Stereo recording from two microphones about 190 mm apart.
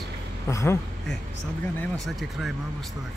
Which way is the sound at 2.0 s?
Centre (ahead or behind).